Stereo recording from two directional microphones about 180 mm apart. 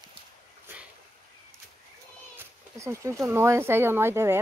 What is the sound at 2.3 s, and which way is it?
Speech, 15° right (ahead or behind).